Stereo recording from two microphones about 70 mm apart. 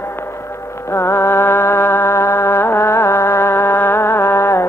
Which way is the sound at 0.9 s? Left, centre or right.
Left.